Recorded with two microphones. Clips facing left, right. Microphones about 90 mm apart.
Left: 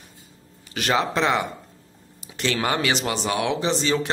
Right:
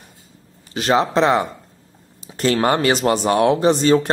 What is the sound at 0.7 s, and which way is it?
A man's voice, 30° right (ahead or behind).